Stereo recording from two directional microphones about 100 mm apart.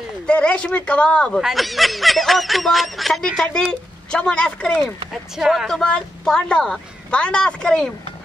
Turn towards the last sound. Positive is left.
turn(degrees=5)  # may be behind; listen again after turning